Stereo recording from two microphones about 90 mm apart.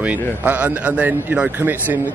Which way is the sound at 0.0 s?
15° right (ahead or behind).